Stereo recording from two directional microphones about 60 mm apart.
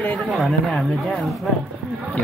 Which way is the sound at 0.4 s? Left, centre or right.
Centre.